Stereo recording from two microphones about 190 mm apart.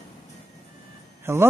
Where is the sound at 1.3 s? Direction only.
15° right (ahead or behind).